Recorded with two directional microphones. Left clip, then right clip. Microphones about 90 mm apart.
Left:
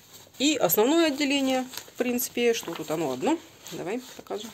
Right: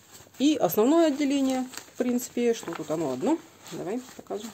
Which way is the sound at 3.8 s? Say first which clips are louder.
Left 1 dB; 15° right (ahead or behind).